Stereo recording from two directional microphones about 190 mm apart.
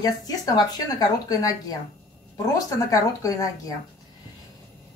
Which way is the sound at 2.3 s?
20° left (ahead or behind).